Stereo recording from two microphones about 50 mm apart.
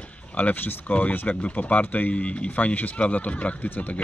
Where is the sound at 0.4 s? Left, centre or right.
Left.